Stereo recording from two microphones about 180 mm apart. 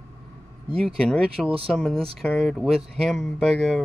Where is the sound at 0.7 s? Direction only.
5° left (ahead or behind).